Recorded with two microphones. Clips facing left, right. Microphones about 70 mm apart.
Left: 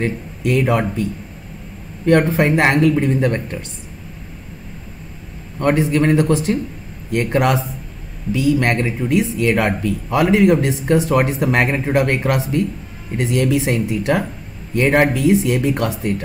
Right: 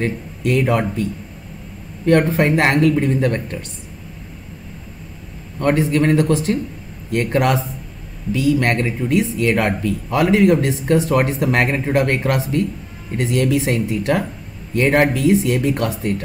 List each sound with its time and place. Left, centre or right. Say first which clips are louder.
0.0 s speech: even; centre
2.0 s speech: left 1 dB; centre
5.6 s speech: left 1 dB; centre